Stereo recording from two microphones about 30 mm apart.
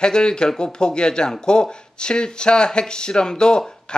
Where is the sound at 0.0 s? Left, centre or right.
Left.